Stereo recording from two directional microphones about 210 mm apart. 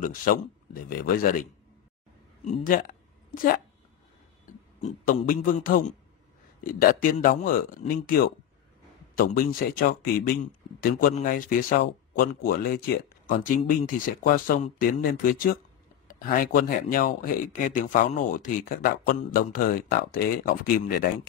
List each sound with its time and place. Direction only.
0.0 s a man's voice: 40° left (ahead or behind)